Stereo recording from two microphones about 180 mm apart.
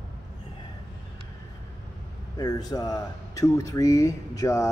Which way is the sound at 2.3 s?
20° left (ahead or behind).